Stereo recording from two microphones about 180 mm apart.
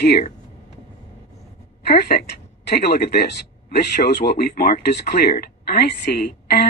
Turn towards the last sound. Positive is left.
turn(degrees=60)  # may be behind; listen again after turning